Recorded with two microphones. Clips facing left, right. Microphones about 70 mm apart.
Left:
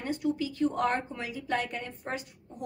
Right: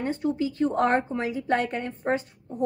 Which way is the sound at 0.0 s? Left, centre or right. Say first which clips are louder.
Right 4 dB; right.